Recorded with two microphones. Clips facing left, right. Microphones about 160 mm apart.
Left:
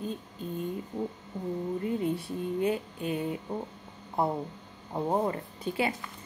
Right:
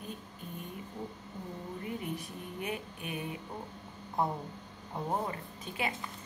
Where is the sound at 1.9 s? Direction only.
25° left (ahead or behind).